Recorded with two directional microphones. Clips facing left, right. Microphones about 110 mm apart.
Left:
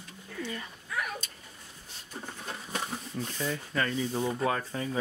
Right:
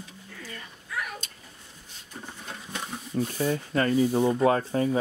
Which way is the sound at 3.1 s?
40° right (ahead or behind).